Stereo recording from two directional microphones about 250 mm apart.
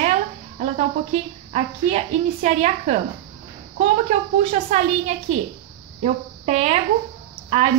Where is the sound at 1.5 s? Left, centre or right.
Right.